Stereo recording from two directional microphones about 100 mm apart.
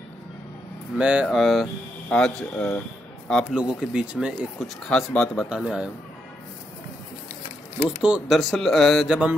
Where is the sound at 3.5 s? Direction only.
10° right (ahead or behind).